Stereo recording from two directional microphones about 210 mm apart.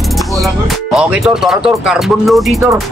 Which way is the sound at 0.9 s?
Centre (ahead or behind).